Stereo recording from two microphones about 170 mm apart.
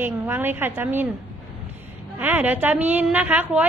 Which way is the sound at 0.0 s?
10° right (ahead or behind).